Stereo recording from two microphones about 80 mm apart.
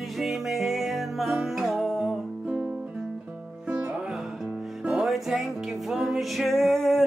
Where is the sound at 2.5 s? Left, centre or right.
Right.